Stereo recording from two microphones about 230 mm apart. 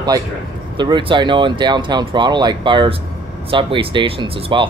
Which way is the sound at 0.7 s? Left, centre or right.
Centre.